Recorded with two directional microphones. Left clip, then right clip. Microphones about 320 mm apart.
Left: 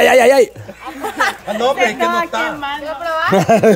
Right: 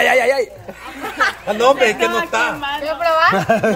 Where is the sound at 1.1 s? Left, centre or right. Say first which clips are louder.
Even; centre.